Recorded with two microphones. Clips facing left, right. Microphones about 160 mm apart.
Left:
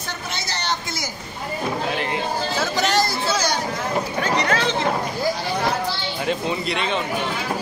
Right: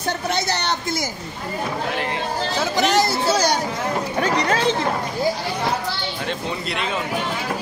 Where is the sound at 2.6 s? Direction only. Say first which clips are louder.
Right 3 dB; 15° right (ahead or behind).